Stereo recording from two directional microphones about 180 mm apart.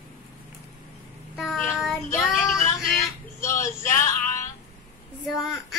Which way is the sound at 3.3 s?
15° left (ahead or behind).